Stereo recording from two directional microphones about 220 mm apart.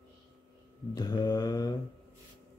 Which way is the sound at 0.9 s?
20° left (ahead or behind).